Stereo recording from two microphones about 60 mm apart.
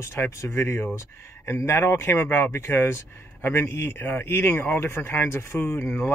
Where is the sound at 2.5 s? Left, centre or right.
Left.